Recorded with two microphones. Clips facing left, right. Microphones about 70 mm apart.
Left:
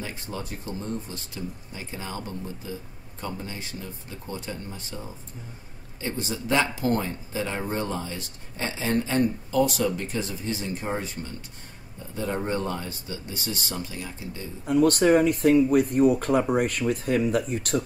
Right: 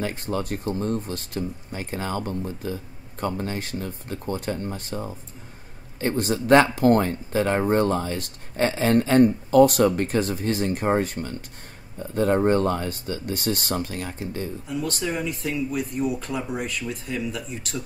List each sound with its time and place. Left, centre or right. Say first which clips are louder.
0.0 s speech: right 7 dB; right
14.7 s speech: left 11 dB; left